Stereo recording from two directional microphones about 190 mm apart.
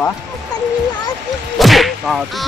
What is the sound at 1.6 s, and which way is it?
Whip, centre (ahead or behind).